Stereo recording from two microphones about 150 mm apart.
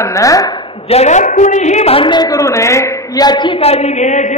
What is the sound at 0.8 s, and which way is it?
A woman's voice, 45° left (ahead or behind).